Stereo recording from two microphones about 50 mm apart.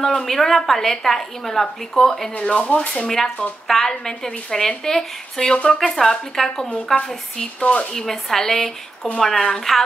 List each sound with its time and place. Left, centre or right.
0.0 s a woman's voice: centre
2.6 s speech: left
3.1 s a woman's voice: centre